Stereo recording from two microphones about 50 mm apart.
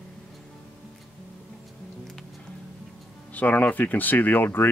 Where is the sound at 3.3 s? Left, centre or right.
Left.